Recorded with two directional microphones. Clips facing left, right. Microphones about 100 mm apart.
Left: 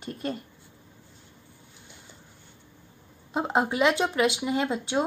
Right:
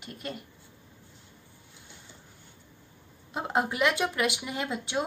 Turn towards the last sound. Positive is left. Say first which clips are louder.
# left 5 dB
turn(degrees=25)  # may be behind; listen again after turning